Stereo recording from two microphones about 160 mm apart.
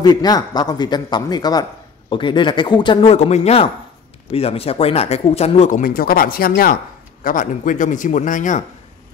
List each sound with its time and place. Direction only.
0.0 s speech: 25° left (ahead or behind); by 5.7 s 40° left (ahead or behind)
5.7 s speech: 60° left (ahead or behind)
7.2 s a man's voice: 55° left (ahead or behind)